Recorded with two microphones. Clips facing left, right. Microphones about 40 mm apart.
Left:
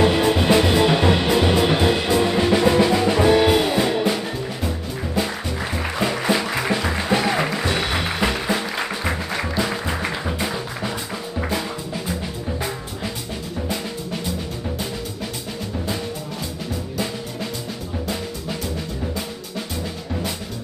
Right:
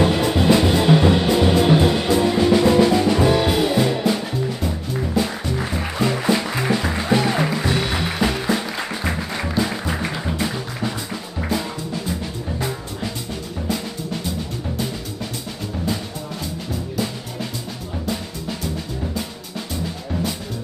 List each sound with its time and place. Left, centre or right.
0.0 s music: centre